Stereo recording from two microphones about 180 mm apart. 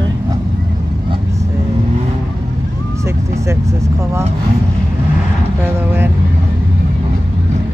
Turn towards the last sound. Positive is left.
turn(degrees=-10)  # may be behind; listen again after turning